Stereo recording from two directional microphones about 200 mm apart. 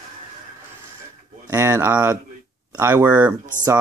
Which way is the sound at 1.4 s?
10° right (ahead or behind).